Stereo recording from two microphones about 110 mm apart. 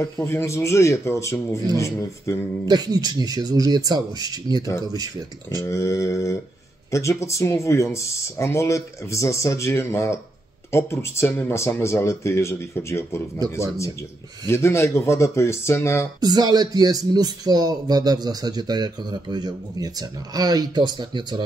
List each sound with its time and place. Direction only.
0.2 s speech: 25° left (ahead or behind)
2.6 s speech: 35° right (ahead or behind)
5.7 s speech: 30° left (ahead or behind)
14.5 s speech: 25° left (ahead or behind)
16.2 s speech: 40° right (ahead or behind)